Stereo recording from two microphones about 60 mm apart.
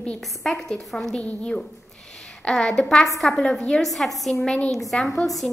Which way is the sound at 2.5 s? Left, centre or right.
Centre.